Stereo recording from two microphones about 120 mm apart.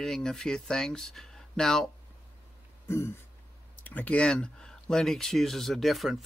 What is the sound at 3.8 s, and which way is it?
Speech, 15° left (ahead or behind).